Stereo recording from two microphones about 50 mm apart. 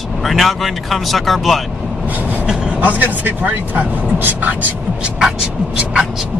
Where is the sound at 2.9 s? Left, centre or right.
Right.